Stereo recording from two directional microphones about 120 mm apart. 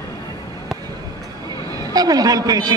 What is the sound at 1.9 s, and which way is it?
Speech, 30° right (ahead or behind).